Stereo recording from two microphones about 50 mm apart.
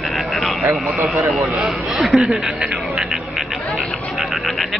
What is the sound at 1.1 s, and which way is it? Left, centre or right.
Speech, centre.